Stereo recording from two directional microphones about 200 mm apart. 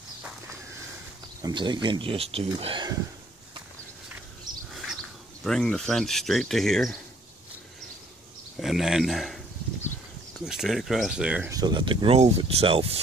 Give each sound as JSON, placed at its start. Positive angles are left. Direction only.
{"t": 1.4, "sound": "speech", "side_deg": -20}
{"t": 4.5, "sound": "bird", "side_deg": -20}
{"t": 5.4, "sound": "speech", "side_deg": 0}
{"t": 8.5, "sound": "speech", "side_deg": 0}
{"t": 10.4, "sound": "speech", "side_deg": 0}
{"t": 11.5, "sound": "speech", "side_deg": -20}